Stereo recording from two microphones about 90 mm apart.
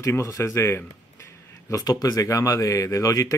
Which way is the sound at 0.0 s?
30° left (ahead or behind).